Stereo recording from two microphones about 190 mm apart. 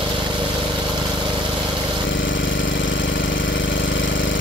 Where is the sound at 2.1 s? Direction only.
80° left.